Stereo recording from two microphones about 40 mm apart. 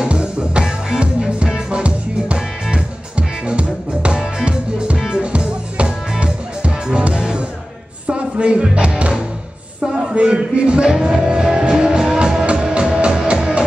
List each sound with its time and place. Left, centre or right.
0.0 s music: right
10.3 s music: right
12.7 s music: right